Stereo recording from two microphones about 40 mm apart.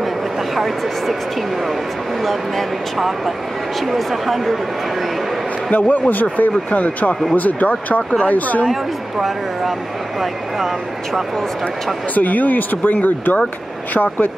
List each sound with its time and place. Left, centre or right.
0.6 s speech: centre
2.2 s speech: centre
5.7 s a man's voice: left
9.2 s speech: centre
12.1 s a man's voice: left